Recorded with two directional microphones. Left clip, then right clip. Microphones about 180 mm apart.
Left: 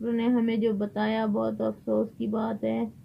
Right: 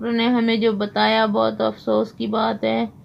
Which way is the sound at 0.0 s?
25° right (ahead or behind).